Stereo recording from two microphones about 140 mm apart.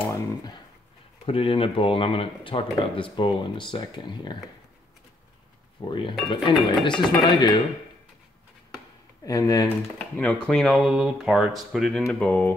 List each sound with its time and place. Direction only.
1.2 s speech: 40° left (ahead or behind)
5.9 s speech: 35° left (ahead or behind)
9.2 s speech: 25° left (ahead or behind)
9.7 s speech: 10° left (ahead or behind)
12.1 s a sound: 10° left (ahead or behind)